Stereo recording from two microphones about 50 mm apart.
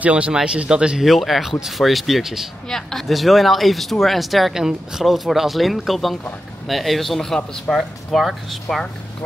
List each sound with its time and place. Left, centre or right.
0.0 s speech: right
1.0 s speech: centre
7.3 s speech: centre
8.1 s speech: centre